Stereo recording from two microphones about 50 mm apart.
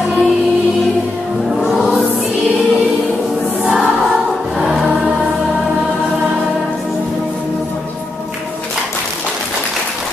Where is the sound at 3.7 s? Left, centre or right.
Centre.